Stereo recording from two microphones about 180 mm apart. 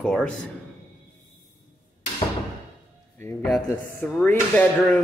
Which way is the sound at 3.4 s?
5° left (ahead or behind).